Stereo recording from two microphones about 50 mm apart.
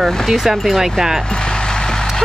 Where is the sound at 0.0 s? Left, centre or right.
Centre.